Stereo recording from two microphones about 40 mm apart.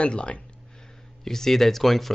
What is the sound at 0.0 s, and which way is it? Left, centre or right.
Speech, left.